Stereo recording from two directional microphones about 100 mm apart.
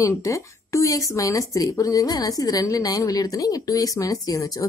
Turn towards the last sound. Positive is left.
turn(degrees=35)  # may be behind; listen again after turning